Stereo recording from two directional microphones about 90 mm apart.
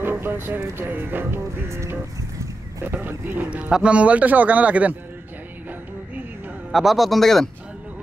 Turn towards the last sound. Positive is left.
turn(degrees=0)  # may be behind; listen again after turning